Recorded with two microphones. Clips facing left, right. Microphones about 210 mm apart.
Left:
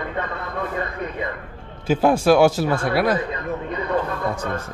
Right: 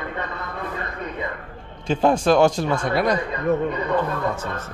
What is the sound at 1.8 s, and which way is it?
A man's voice, 5° left (ahead or behind).